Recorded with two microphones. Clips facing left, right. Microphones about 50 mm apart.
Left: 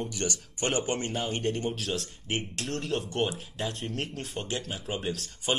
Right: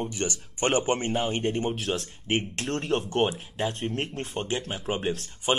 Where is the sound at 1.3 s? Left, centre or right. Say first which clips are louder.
Right 3 dB; centre.